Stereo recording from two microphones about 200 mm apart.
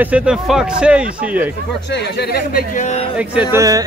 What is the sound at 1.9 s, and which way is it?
A man's voice, 55° left (ahead or behind).